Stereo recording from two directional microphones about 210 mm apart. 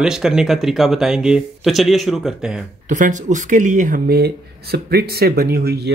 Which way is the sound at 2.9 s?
35° right (ahead or behind).